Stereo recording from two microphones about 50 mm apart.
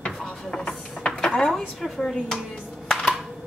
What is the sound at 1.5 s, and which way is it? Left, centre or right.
Speech, centre.